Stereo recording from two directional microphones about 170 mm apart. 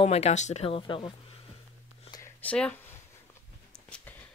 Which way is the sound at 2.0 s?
20° left (ahead or behind).